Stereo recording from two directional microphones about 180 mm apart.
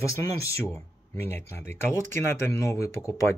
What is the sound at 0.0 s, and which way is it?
Speech, 15° left (ahead or behind).